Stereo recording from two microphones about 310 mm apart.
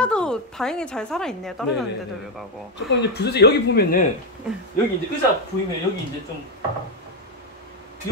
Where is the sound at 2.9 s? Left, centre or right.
Left.